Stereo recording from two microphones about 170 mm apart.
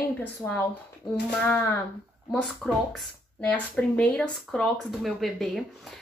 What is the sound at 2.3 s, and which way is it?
Speech, centre (ahead or behind).